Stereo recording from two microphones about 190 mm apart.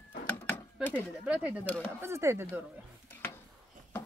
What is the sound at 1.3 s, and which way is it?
Speech, 5° right (ahead or behind).